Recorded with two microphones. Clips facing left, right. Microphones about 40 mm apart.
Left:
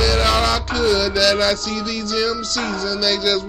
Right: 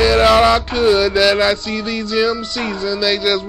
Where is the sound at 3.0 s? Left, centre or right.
Centre.